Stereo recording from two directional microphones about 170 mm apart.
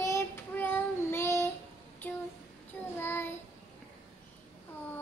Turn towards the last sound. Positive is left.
turn(degrees=10)  # may be behind; listen again after turning